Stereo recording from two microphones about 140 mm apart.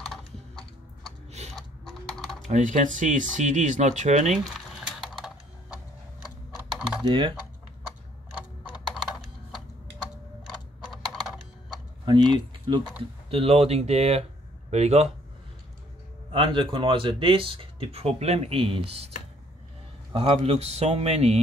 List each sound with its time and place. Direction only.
0.1 s typing: centre (ahead or behind)
2.4 s speech: 60° right (ahead or behind)
4.6 s typing: centre (ahead or behind)
6.5 s typing: 10° right (ahead or behind)
7.1 s speech: 35° right (ahead or behind)
8.6 s typing: centre (ahead or behind)
10.9 s typing: centre (ahead or behind)
12.0 s speech: 35° right (ahead or behind)
13.3 s a man's voice: 45° right (ahead or behind)
16.3 s speech: 40° right (ahead or behind)
20.2 s a man's voice: 45° right (ahead or behind)